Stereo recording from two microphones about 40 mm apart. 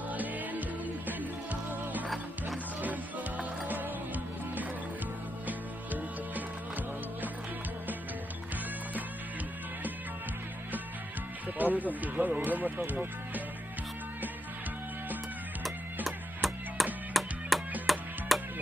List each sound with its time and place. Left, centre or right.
0.1 s music: right
11.5 s speech: right
16.3 s music: centre